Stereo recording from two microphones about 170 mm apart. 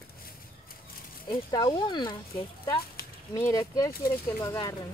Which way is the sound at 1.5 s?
25° left (ahead or behind).